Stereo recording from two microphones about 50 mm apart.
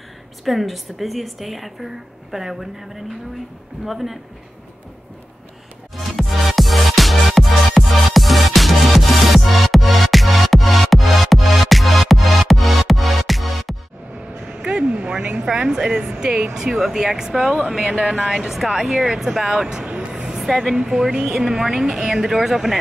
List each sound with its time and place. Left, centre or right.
0.5 s a woman's voice: centre
5.9 s music: centre
14.5 s a sound: right
16.0 s speech: centre
16.7 s a woman's voice: centre
20.2 s a sound: centre
20.7 s speech: centre